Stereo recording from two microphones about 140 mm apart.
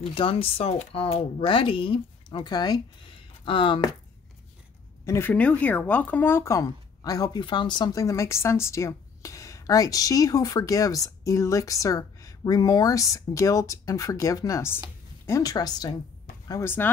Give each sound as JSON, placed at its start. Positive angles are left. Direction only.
{"t": 0.0, "sound": "speech", "side_deg": 40}
{"t": 5.0, "sound": "speech", "side_deg": 15}